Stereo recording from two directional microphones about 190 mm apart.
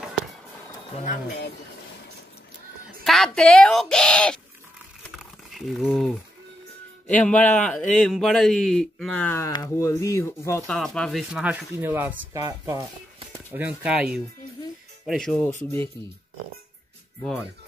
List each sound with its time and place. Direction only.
3.0 s a man's voice: centre (ahead or behind)
5.0 s crumpling: centre (ahead or behind)
7.2 s a man's voice: 5° left (ahead or behind)
10.7 s speech: centre (ahead or behind); by 13.4 s 20° right (ahead or behind)
13.5 s a man's voice: 10° right (ahead or behind)
17.2 s a man's voice: 5° left (ahead or behind)